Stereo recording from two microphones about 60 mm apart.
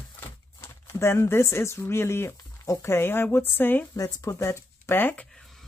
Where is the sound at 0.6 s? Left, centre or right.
Left.